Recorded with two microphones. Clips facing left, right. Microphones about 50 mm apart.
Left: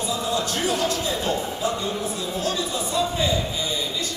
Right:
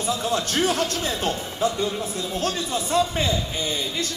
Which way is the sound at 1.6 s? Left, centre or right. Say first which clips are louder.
Right 4 dB; right.